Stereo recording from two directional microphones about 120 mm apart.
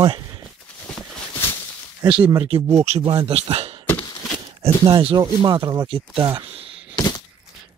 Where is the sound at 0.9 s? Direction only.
5° left (ahead or behind).